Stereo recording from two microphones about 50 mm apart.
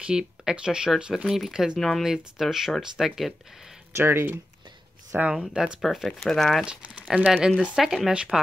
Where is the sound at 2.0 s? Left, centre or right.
Centre.